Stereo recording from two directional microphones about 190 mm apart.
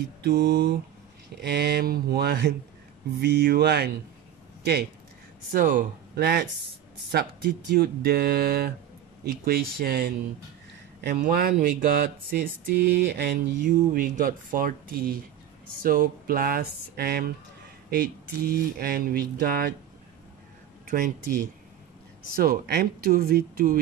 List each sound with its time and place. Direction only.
0.2 s speech: 55° right (ahead or behind)
5.5 s speech: 45° right (ahead or behind)
13.6 s speech: 45° right (ahead or behind)
20.8 s speech: 45° right (ahead or behind)